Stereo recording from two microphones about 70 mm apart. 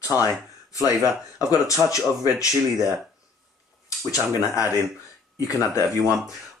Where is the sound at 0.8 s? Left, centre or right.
Left.